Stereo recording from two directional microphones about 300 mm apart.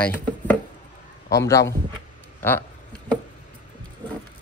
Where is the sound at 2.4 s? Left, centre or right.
Centre.